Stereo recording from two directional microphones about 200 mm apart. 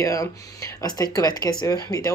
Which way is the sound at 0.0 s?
15° left (ahead or behind).